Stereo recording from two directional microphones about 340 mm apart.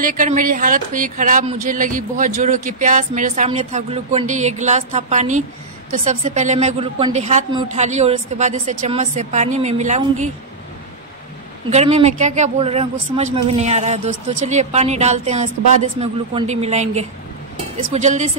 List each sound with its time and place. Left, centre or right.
0.0 s speech: right
11.7 s speech: centre